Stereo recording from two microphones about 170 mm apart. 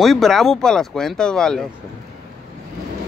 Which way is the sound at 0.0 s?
Centre (ahead or behind).